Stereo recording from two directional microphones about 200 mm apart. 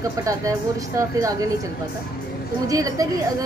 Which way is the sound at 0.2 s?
15° right (ahead or behind).